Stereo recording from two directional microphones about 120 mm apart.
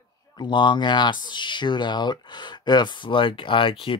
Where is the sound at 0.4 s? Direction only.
40° left (ahead or behind).